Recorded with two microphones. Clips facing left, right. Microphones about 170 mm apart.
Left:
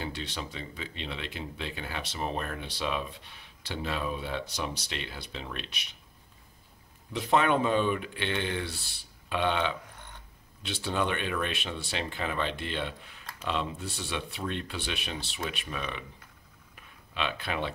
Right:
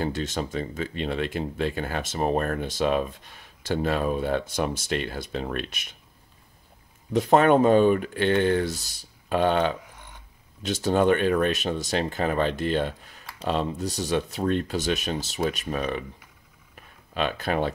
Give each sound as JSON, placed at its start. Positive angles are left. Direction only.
{"t": 0.0, "sound": "speech", "side_deg": -45}
{"t": 7.1, "sound": "speech", "side_deg": -45}
{"t": 16.7, "sound": "a sound", "side_deg": -45}